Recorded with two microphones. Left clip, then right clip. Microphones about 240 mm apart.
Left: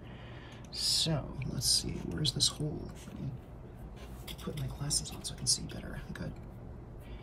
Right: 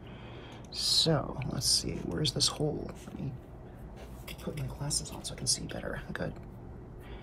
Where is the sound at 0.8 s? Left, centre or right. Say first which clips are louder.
Right 5 dB; right.